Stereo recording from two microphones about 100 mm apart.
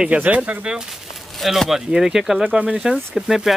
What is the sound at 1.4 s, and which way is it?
Speech, centre (ahead or behind).